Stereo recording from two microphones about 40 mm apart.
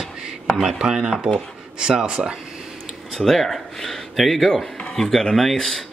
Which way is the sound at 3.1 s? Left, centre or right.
Centre.